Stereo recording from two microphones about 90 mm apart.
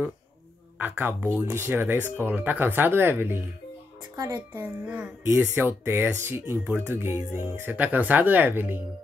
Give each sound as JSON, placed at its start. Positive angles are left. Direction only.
{"t": 0.7, "sound": "speech", "side_deg": -20}
{"t": 4.2, "sound": "a child's voice", "side_deg": -40}
{"t": 4.6, "sound": "speech", "side_deg": -20}